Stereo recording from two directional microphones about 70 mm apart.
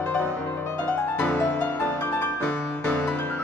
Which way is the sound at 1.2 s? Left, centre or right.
Left.